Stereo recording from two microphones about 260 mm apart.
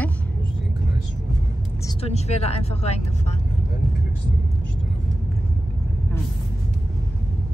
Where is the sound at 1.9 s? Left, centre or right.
Left.